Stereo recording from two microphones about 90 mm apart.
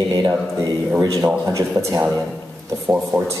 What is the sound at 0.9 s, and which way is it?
Speech, 35° right (ahead or behind).